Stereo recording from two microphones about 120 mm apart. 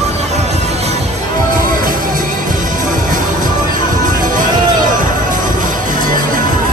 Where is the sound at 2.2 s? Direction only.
90° right.